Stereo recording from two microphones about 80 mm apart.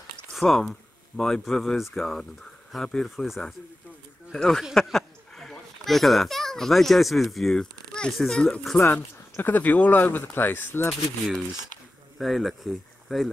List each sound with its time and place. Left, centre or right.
0.3 s a child's voice: centre
9.4 s speech: left
10.9 s speech: centre